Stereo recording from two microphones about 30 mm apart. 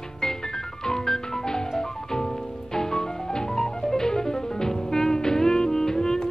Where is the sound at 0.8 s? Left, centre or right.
Centre.